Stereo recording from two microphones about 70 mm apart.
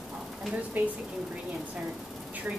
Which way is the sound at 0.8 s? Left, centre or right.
Right.